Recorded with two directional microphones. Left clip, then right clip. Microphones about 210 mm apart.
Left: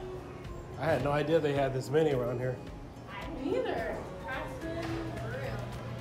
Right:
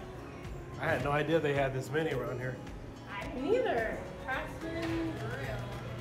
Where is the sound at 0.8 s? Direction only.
20° left (ahead or behind).